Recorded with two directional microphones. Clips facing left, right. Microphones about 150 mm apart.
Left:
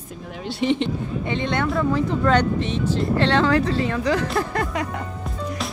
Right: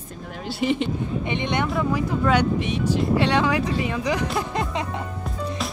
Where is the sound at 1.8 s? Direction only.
10° right (ahead or behind).